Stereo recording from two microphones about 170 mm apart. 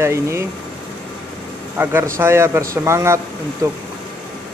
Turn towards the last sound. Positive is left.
turn(degrees=-20)  # may be behind; listen again after turning